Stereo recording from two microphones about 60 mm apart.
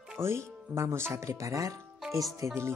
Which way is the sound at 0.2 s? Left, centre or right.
Right.